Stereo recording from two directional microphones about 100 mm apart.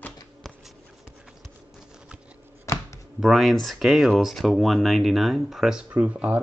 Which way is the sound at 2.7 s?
30° left (ahead or behind).